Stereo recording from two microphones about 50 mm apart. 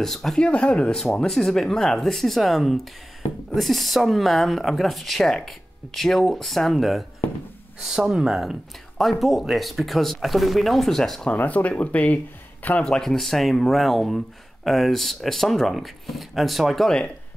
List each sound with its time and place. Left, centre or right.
0.0 s speech: centre
0.4 s speech: left
0.9 s speech: centre
11.3 s speech: left
12.8 s speech: centre